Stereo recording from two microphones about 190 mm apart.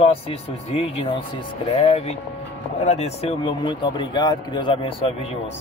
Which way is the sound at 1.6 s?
35° left (ahead or behind).